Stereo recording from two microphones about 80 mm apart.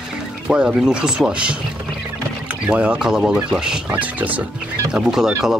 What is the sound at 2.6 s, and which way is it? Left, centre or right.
Speech, centre.